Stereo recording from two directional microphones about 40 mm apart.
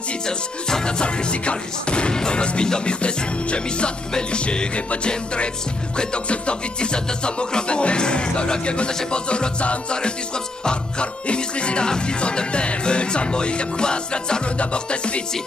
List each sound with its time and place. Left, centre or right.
0.3 s music: centre